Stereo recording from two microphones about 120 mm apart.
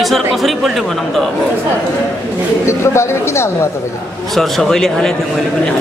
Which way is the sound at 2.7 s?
20° left (ahead or behind).